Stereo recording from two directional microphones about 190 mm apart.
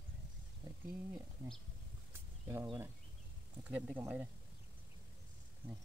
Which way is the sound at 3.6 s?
5° right (ahead or behind).